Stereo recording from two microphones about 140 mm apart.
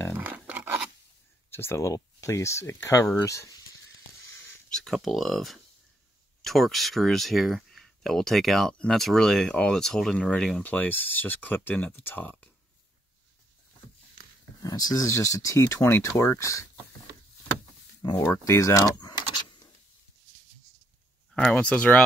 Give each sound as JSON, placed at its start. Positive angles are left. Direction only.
{"t": 0.2, "sound": "a sound", "side_deg": -10}
{"t": 1.5, "sound": "speech", "side_deg": 15}
{"t": 4.6, "sound": "speech", "side_deg": 5}
{"t": 14.6, "sound": "speech", "side_deg": 25}
{"t": 18.2, "sound": "speech", "side_deg": 20}
{"t": 21.3, "sound": "speech", "side_deg": 5}